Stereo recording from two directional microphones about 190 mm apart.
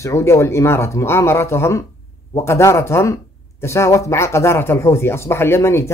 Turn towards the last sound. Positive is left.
turn(degrees=15)  # may be behind; listen again after turning